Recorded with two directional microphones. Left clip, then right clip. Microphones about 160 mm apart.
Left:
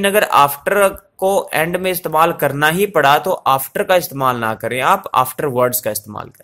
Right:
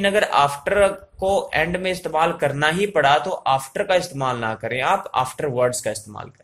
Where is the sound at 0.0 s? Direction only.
40° left (ahead or behind).